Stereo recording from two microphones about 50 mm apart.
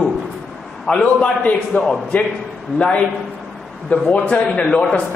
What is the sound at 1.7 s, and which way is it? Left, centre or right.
Speech, left.